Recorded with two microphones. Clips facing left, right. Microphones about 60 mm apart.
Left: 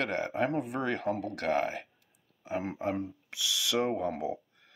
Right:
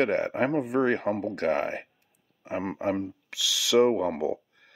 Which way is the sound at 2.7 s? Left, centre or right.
Right.